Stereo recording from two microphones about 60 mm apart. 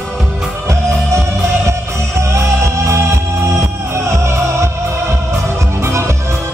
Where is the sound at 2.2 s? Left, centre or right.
Right.